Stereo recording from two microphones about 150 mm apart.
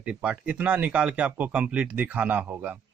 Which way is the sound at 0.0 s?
5° right (ahead or behind).